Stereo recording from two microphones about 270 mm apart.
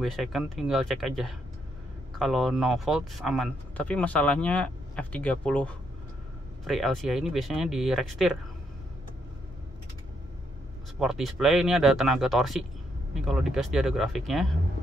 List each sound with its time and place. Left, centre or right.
0.0 s speech: centre
11.0 s speech: centre